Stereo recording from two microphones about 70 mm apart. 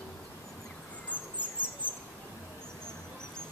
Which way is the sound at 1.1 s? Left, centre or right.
Left.